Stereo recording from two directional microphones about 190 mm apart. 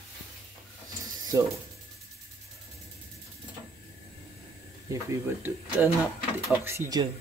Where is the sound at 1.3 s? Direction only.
15° right (ahead or behind).